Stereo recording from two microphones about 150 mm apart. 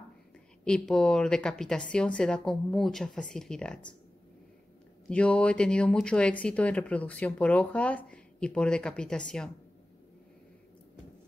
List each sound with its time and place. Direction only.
0.7 s speech: 5° left (ahead or behind)
5.1 s speech: 10° left (ahead or behind)